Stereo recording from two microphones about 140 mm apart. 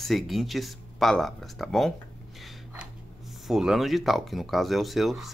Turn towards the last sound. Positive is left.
turn(degrees=0)  # may be behind; listen again after turning